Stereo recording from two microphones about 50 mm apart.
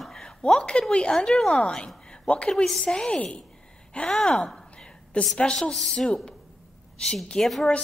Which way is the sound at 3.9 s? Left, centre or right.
Left.